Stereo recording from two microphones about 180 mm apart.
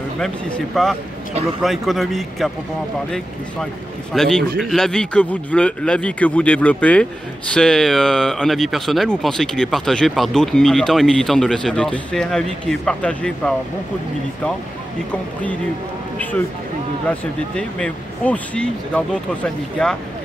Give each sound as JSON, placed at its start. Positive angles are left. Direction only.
{"t": 0.2, "sound": "speech", "side_deg": 0}
{"t": 4.1, "sound": "a man's voice", "side_deg": 5}
{"t": 16.2, "sound": "a man's voice", "side_deg": 10}